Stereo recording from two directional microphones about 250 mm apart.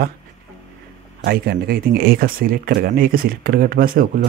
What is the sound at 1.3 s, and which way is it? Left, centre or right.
Speech, right.